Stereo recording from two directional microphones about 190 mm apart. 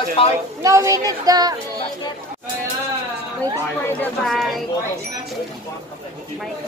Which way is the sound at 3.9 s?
Centre (ahead or behind).